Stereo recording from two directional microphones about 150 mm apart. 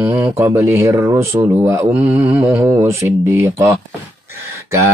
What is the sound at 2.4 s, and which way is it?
Speech, 15° right (ahead or behind).